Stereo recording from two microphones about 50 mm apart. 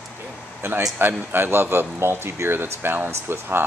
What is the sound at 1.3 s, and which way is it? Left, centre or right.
Speech, right.